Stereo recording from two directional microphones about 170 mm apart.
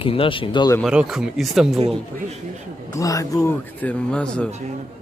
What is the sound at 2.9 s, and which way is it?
A man's voice, 20° left (ahead or behind).